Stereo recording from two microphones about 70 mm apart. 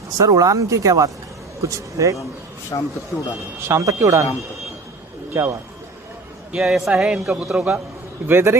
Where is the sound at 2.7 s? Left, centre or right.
Left.